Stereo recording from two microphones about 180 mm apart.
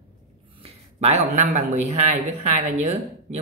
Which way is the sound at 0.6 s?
35° right (ahead or behind).